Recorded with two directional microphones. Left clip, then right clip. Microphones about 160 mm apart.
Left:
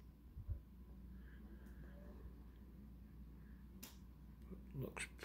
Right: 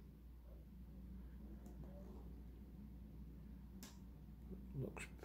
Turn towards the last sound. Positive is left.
turn(degrees=-5)  # may be behind; listen again after turning